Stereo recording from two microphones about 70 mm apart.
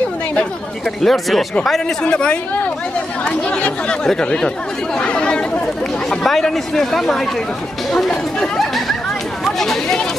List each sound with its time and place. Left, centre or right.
1.0 s speech: centre
4.9 s chatter: centre
6.0 s speech: centre